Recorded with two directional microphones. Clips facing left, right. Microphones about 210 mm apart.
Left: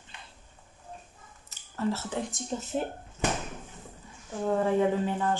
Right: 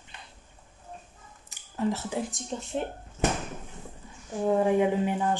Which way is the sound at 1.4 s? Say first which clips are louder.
Right 2 dB; 15° right (ahead or behind).